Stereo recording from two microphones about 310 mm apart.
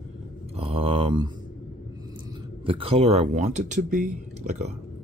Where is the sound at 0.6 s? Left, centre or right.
Centre.